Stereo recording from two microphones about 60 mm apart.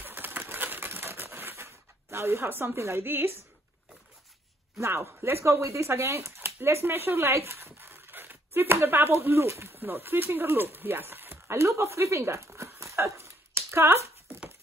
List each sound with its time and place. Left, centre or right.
0.0 s a sound: right
4.7 s speech: right
7.7 s a sound: right
8.8 s speech: right
9.8 s speech: right
12.5 s dog: right